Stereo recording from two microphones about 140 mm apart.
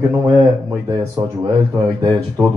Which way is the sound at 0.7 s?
25° right (ahead or behind).